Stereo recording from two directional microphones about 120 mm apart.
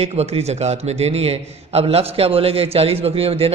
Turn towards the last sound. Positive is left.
turn(degrees=-55)  # may be behind; listen again after turning